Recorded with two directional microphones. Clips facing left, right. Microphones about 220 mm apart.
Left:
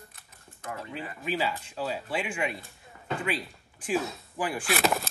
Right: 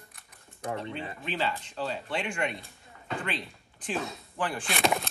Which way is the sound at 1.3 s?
5° left (ahead or behind).